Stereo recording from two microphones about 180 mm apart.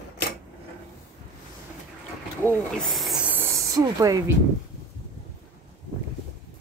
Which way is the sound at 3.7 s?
20° right (ahead or behind).